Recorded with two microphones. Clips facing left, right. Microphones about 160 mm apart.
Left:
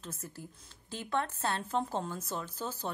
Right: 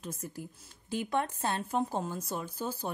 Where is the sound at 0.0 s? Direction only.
10° right (ahead or behind).